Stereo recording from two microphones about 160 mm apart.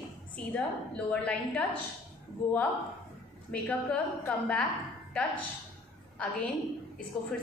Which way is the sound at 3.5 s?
10° left (ahead or behind).